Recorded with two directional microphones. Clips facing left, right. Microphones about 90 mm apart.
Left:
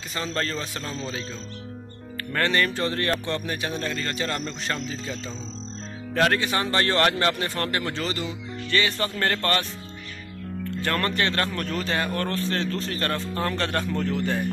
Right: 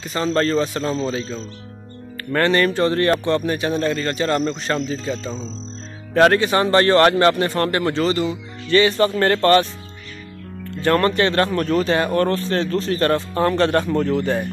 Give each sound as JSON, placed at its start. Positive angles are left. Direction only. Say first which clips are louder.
{"t": 0.1, "sound": "a man's voice", "louder": "right 10 dB", "side_deg": -35}
{"t": 2.1, "sound": "a man's voice", "louder": "right 6 dB", "side_deg": -40}
{"t": 10.8, "sound": "a man's voice", "louder": "right 9 dB", "side_deg": -30}